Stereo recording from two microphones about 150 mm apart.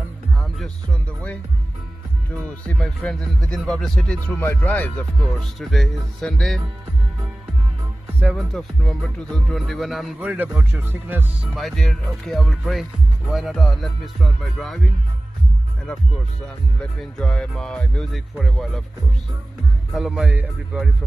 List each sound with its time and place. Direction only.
2.4 s speech: 5° left (ahead or behind)
4.4 s speech: 15° left (ahead or behind)
8.2 s speech: 5° right (ahead or behind)
11.5 s speech: centre (ahead or behind)
17.0 s speech: 5° left (ahead or behind)
19.9 s speech: centre (ahead or behind)